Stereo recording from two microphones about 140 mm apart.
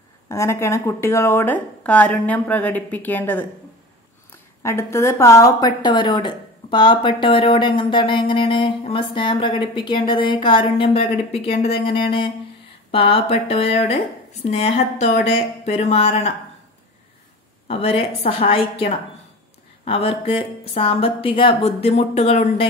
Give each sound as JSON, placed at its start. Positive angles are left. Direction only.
{"t": 0.3, "sound": "speech", "side_deg": 20}
{"t": 4.6, "sound": "speech", "side_deg": 20}
{"t": 17.6, "sound": "speech", "side_deg": 45}